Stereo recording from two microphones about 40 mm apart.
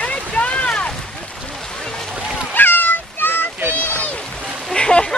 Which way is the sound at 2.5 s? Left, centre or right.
Left.